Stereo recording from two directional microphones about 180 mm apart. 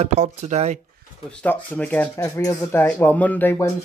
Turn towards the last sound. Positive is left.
turn(degrees=15)  # may be behind; listen again after turning